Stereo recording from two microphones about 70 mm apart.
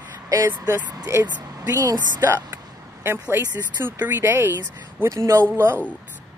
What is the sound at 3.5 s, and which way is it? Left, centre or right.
Speech, right.